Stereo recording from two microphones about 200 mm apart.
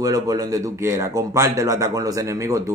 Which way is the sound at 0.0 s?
15° right (ahead or behind).